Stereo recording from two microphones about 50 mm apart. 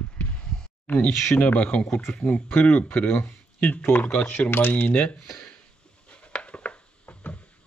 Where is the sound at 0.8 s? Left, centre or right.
Left.